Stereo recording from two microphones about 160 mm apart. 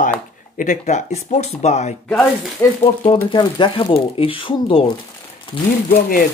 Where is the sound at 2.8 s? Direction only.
35° left (ahead or behind).